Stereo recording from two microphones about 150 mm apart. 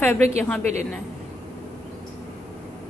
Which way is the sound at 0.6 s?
50° right (ahead or behind).